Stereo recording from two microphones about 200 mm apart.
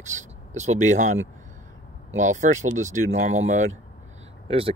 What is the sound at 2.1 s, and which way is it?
Speech, 40° right (ahead or behind).